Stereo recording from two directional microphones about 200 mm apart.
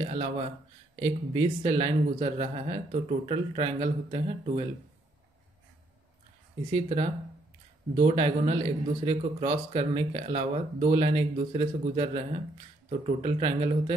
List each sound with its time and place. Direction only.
0.0 s speech: 30° right (ahead or behind)
6.7 s speech: 30° right (ahead or behind)